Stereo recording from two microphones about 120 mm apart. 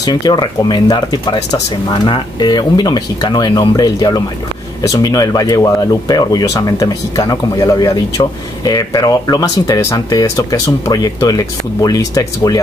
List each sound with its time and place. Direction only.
0.0 s speech: 35° left (ahead or behind)